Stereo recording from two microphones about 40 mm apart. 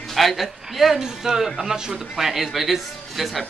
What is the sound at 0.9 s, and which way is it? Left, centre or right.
A man's voice, centre.